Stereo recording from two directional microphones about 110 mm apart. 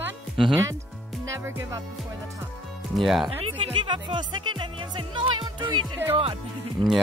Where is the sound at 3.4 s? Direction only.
55° right (ahead or behind).